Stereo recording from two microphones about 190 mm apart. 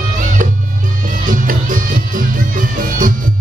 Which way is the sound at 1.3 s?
45° right (ahead or behind).